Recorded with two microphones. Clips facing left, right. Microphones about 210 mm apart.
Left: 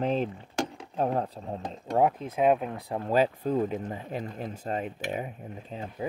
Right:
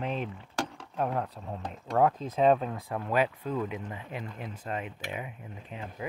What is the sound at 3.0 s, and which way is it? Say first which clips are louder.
Speech: left 4 dB; 35° left (ahead or behind).